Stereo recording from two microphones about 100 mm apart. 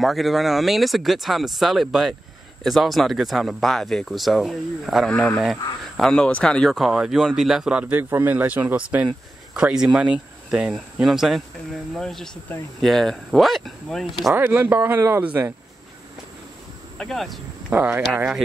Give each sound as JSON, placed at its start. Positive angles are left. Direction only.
{"t": 0.0, "sound": "speech", "side_deg": 0}
{"t": 5.1, "sound": "speech", "side_deg": 15}
{"t": 5.9, "sound": "speech", "side_deg": 5}
{"t": 6.7, "sound": "speech", "side_deg": -5}
{"t": 14.3, "sound": "speech", "side_deg": -20}
{"t": 17.0, "sound": "speech", "side_deg": 0}
{"t": 17.6, "sound": "speech", "side_deg": -15}